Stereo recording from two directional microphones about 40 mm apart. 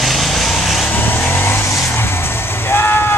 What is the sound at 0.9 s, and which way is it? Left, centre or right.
Vehicle, left.